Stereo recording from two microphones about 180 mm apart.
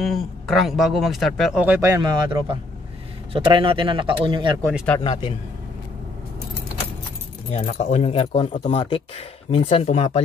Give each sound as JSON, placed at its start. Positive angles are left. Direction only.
{"t": 0.0, "sound": "speech", "side_deg": 0}
{"t": 5.0, "sound": "speech", "side_deg": 35}
{"t": 7.5, "sound": "speech", "side_deg": 40}